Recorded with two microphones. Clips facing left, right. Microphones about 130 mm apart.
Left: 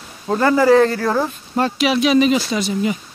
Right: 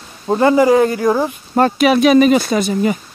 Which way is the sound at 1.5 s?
50° right (ahead or behind).